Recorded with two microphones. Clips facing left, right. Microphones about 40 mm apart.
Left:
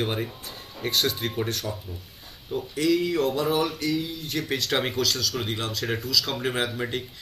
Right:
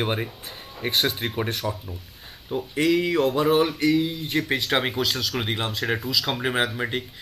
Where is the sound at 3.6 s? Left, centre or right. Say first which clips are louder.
Right 5 dB; right.